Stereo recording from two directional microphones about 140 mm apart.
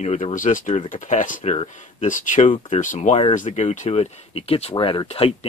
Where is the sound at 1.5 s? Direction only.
55° left (ahead or behind).